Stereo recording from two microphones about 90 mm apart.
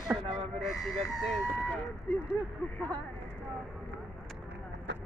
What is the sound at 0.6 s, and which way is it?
Speech, centre (ahead or behind).